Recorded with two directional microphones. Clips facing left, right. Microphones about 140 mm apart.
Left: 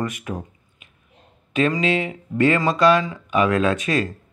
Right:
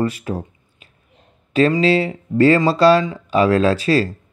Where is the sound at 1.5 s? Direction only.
35° right (ahead or behind).